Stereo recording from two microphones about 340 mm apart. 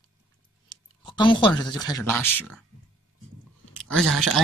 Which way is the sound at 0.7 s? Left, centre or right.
Centre.